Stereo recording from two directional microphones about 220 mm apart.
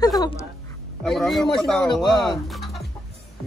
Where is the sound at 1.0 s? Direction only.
Centre (ahead or behind).